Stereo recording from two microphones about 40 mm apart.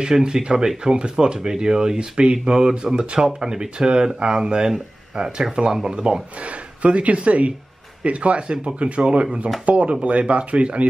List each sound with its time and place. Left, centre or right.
0.1 s speech: centre